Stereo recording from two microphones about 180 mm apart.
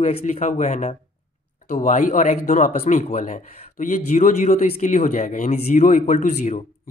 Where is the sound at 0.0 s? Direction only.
35° left (ahead or behind).